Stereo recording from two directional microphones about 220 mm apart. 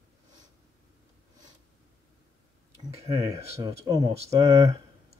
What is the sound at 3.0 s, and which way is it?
Speech, 15° right (ahead or behind).